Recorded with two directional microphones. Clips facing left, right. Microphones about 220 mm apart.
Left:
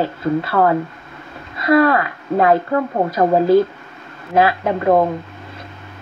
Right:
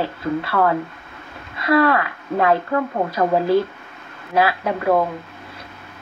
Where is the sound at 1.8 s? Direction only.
35° left (ahead or behind).